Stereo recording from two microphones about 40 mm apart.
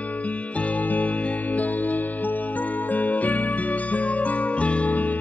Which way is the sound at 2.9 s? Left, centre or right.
Left.